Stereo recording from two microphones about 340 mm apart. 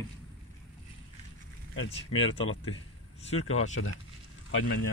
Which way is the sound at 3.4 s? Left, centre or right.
Left.